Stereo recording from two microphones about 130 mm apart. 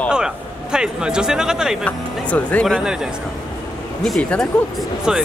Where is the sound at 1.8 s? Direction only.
10° left (ahead or behind).